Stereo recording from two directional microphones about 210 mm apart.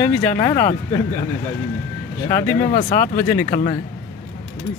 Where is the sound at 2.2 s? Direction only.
15° left (ahead or behind).